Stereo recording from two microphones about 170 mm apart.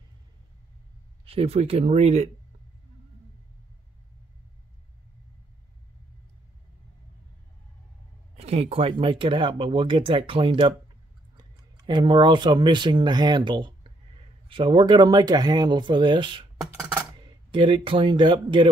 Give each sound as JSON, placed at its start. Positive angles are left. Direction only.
{"t": 1.2, "sound": "speech", "side_deg": -35}
{"t": 8.4, "sound": "speech", "side_deg": -35}
{"t": 17.5, "sound": "speech", "side_deg": -30}